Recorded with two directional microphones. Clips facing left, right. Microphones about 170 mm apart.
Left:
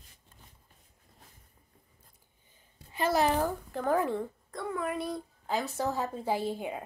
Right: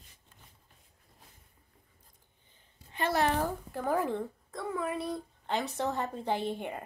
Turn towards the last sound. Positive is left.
turn(degrees=5)  # may be behind; listen again after turning